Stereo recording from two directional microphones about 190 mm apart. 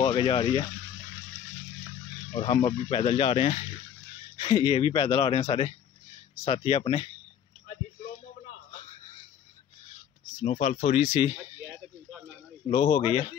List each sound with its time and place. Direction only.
0.0 s speech: 25° left (ahead or behind)
2.3 s speech: 30° left (ahead or behind)
10.4 s speech: 40° left (ahead or behind)
12.6 s speech: 35° left (ahead or behind)